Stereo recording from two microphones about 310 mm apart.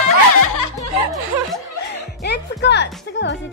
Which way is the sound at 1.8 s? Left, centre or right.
Left.